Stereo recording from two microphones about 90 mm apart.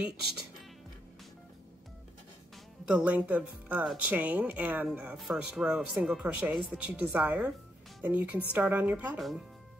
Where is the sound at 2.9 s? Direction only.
15° right (ahead or behind).